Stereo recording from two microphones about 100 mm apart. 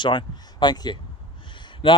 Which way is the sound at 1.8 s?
60° left (ahead or behind).